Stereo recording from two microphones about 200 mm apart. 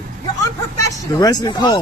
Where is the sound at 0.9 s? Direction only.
20° left (ahead or behind).